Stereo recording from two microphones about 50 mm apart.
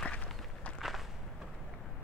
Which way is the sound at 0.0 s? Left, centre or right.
Centre.